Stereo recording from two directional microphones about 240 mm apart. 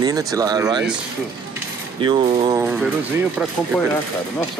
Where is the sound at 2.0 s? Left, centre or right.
Right.